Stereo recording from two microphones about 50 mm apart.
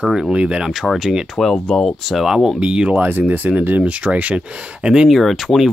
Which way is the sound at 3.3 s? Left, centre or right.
Right.